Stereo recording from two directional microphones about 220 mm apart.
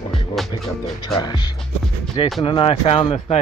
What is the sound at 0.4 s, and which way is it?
Music, centre (ahead or behind).